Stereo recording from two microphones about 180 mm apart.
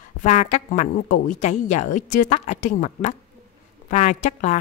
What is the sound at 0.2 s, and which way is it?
Speech, 40° left (ahead or behind).